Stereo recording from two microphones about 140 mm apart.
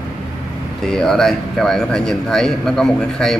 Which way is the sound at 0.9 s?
5° left (ahead or behind).